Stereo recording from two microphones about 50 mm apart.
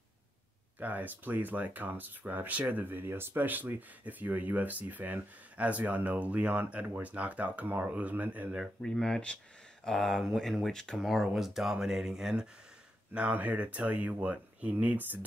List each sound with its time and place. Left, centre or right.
0.7 s speech: right
7.6 s speech: right
7.9 s speech: right
8.8 s speech: centre
10.2 s speech: centre
11.0 s speech: centre
13.3 s speech: right